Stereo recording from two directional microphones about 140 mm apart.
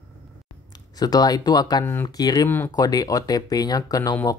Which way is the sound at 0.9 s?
25° left (ahead or behind).